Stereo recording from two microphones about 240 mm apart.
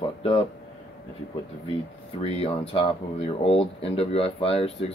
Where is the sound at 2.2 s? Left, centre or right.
Left.